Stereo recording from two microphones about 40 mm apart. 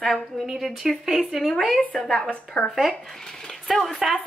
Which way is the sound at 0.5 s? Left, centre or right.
Centre.